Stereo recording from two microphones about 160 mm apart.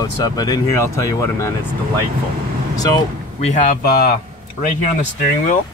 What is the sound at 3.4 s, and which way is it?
Speech, 50° left (ahead or behind).